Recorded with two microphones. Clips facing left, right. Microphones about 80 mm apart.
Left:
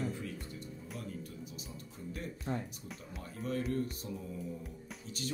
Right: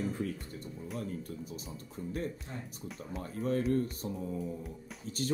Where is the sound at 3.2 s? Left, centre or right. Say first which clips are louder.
Right 5 dB; right.